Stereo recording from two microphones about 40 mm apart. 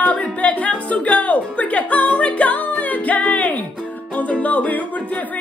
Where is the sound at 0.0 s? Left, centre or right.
Left.